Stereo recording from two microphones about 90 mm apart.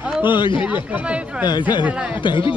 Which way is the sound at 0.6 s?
15° right (ahead or behind).